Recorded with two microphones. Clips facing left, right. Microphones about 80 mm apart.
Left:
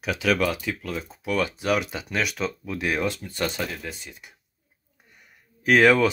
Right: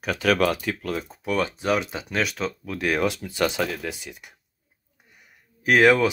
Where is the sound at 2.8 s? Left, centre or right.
Right.